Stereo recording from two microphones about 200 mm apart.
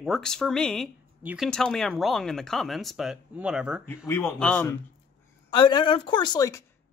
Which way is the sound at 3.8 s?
10° left (ahead or behind).